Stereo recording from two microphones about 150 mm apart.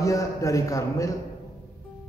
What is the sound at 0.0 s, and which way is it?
A man's voice, 20° left (ahead or behind).